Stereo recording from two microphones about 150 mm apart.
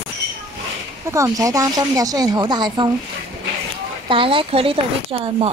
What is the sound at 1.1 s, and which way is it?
Speech, 20° right (ahead or behind).